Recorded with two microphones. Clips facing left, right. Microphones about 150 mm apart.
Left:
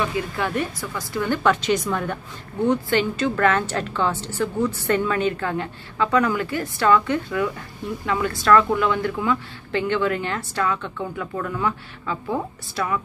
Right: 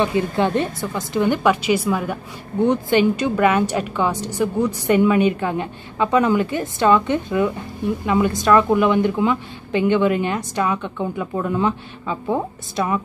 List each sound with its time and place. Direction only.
0.0 s speech: 25° right (ahead or behind); by 2.1 s 5° right (ahead or behind)
2.6 s a woman's voice: 20° right (ahead or behind)